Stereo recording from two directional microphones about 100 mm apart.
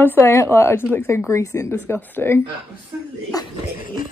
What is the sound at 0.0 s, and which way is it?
Speech, 20° left (ahead or behind).